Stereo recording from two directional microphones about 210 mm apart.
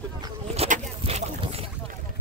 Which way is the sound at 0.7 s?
30° right (ahead or behind).